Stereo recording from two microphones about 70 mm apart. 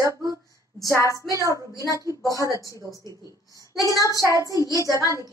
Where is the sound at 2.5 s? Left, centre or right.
Left.